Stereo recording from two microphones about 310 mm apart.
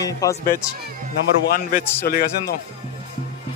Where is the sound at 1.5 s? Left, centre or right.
Left.